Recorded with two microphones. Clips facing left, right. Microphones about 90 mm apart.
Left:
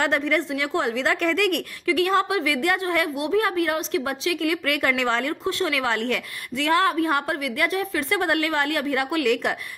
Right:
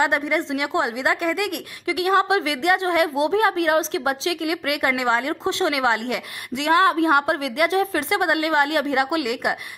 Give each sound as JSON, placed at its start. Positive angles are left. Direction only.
{"t": 0.0, "sound": "a woman's voice", "side_deg": -15}